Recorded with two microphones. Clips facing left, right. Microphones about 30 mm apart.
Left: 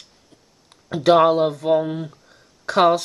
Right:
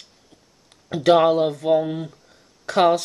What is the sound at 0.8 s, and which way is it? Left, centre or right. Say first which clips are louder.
Speech: left 1 dB; centre.